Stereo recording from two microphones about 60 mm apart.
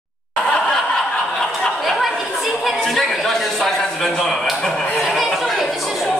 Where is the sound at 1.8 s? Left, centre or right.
Centre.